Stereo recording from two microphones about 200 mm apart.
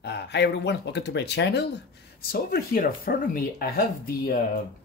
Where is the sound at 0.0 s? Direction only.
55° left (ahead or behind).